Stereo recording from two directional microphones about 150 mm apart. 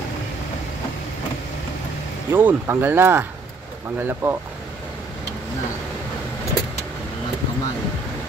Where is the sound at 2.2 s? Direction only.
15° right (ahead or behind).